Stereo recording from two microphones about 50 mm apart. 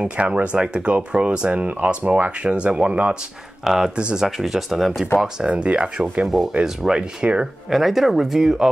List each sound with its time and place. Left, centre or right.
0.0 s speech: right
3.6 s speech: centre
4.4 s speech: centre
5.5 s speech: right
6.6 s speech: centre
7.0 s speech: right
7.7 s speech: centre